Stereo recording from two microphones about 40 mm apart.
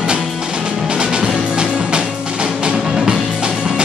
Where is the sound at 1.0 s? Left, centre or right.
Right.